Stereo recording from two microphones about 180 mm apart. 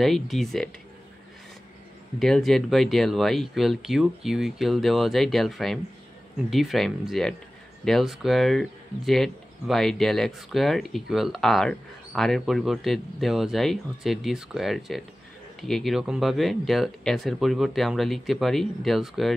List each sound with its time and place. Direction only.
0.0 s speech: centre (ahead or behind)
2.1 s speech: centre (ahead or behind)